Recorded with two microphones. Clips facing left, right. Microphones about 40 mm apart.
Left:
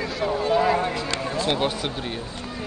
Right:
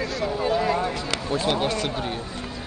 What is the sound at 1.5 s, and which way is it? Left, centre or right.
Speech, centre.